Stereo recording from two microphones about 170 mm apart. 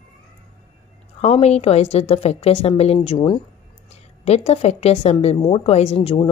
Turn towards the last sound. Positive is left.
turn(degrees=35)  # may be behind; listen again after turning